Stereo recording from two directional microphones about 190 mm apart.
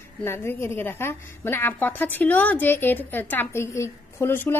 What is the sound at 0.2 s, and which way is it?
A woman's voice, 15° left (ahead or behind).